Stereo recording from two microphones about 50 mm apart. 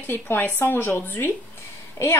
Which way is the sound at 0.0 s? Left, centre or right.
Left.